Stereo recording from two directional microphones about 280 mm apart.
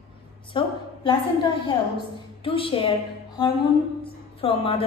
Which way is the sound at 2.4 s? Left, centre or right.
Centre.